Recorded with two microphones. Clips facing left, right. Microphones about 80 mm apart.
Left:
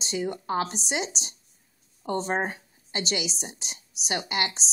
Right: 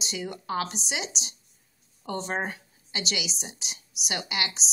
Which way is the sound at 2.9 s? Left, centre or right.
Left.